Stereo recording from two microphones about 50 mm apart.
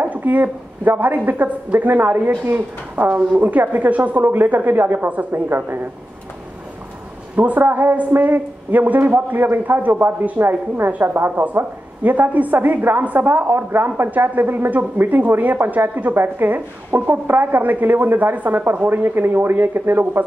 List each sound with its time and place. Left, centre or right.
0.0 s a woman's voice: right
7.3 s a woman's voice: right
7.6 s a woman's voice: right
7.9 s a woman's voice: right
9.1 s a woman's voice: right
11.5 s a woman's voice: right